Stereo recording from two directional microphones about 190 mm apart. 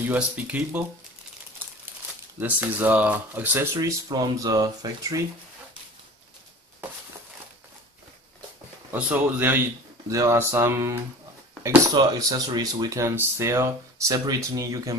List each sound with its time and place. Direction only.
0.1 s speech: 10° right (ahead or behind)
2.4 s speech: 10° right (ahead or behind)
8.9 s speech: 10° right (ahead or behind)